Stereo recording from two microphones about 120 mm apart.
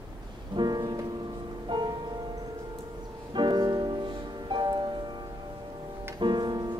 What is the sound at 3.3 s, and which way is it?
Music, 40° right (ahead or behind).